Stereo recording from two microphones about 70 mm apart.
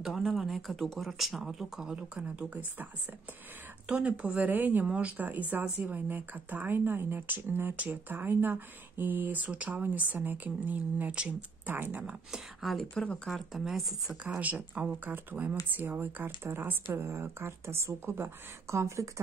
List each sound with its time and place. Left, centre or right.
0.0 s speech: centre; by 12.2 s right
12.3 s speech: centre
12.9 s speech: centre
13.3 s speech: centre
14.4 s speech: right